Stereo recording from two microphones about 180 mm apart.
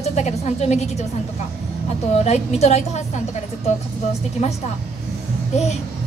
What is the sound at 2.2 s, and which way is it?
Speech, 35° left (ahead or behind).